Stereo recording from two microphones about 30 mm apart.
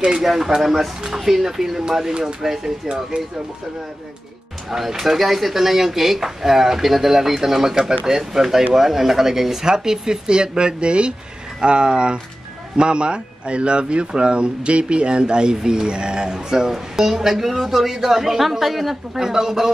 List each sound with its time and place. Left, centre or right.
0.2 s speech: centre
4.6 s speech: centre
9.7 s speech: right; by 18.9 s centre
19.1 s speech: centre